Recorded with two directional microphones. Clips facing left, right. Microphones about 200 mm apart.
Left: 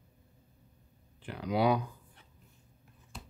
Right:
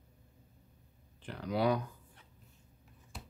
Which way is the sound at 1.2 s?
10° left (ahead or behind).